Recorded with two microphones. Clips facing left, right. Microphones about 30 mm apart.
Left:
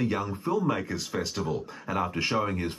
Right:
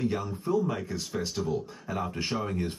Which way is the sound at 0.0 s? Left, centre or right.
Left.